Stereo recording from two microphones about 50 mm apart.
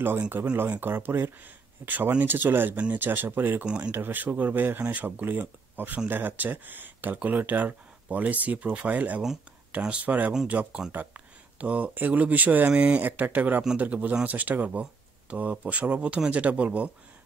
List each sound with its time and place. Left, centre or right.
0.6 s speech: right
1.9 s speech: right
3.6 s speech: right
3.9 s speech: right
10.9 s speech: right
11.5 s speech: right